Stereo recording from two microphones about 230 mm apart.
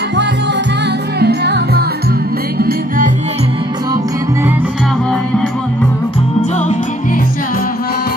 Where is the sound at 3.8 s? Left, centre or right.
Centre.